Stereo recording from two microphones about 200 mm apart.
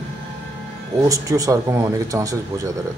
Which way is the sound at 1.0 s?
15° right (ahead or behind).